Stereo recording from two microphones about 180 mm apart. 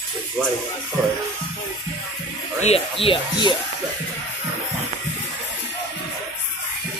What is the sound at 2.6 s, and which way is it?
Speech, 35° left (ahead or behind).